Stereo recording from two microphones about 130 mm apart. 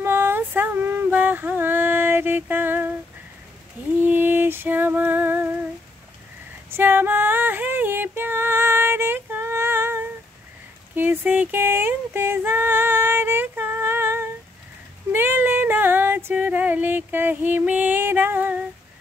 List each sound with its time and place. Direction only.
0.0 s a sound: 15° right (ahead or behind)
4.0 s music: 15° right (ahead or behind)
6.7 s female singing: 15° right (ahead or behind)